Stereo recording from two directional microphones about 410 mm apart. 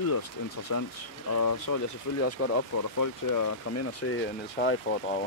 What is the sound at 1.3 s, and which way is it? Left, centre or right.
Speech, left.